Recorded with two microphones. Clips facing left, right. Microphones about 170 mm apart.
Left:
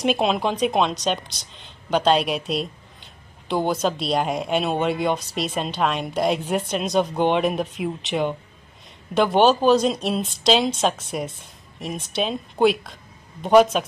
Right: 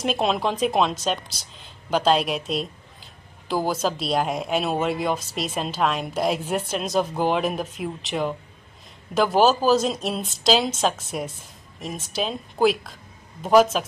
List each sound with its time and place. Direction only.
0.0 s a woman's voice: centre (ahead or behind)